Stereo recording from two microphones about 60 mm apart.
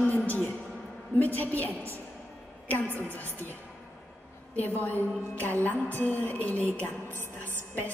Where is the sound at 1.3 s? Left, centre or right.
Left.